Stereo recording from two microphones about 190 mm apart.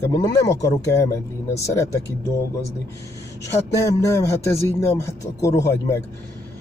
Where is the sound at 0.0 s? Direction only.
20° left (ahead or behind).